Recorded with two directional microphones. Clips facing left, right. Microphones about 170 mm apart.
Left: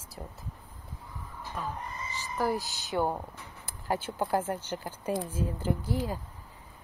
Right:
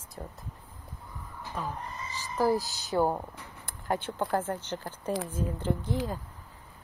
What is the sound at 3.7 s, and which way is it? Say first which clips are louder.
Speech: right 1 dB; 5° left (ahead or behind).